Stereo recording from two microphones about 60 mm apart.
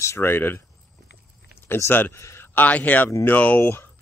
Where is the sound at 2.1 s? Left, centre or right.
Left.